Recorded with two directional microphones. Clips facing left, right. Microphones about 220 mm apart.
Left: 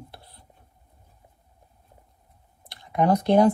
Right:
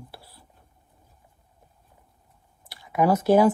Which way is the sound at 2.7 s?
5° right (ahead or behind).